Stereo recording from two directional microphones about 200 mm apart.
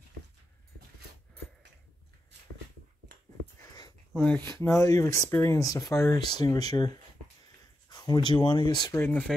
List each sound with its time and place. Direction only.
3.7 s a sound: 20° left (ahead or behind)
4.5 s speech: 15° left (ahead or behind)
7.9 s speech: 20° left (ahead or behind)